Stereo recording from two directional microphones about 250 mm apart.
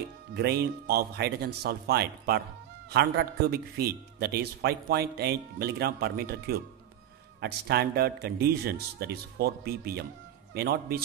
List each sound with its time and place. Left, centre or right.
0.3 s speech: right